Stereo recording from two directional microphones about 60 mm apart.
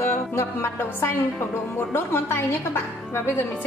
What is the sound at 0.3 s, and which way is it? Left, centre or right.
Speech, left.